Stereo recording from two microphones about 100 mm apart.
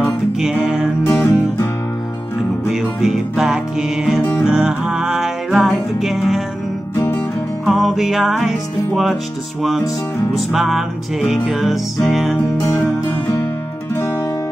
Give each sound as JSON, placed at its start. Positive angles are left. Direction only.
{"t": 0.0, "sound": "music", "side_deg": -5}
{"t": 1.0, "sound": "music", "side_deg": 20}
{"t": 2.7, "sound": "music", "side_deg": -5}
{"t": 7.6, "sound": "music", "side_deg": 0}
{"t": 10.3, "sound": "music", "side_deg": -5}
{"t": 12.5, "sound": "music", "side_deg": 30}